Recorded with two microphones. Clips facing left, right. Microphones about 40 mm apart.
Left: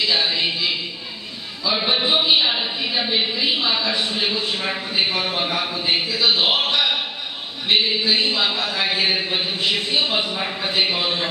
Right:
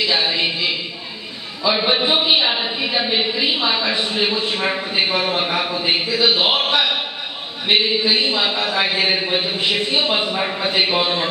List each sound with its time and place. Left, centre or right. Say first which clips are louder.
0.1 s music: right 1 dB; centre
1.7 s speech: right 3 dB; centre
7.6 s speech: right 2 dB; right
8.1 s speech: right 2 dB; centre
10.3 s speech: right 4 dB; right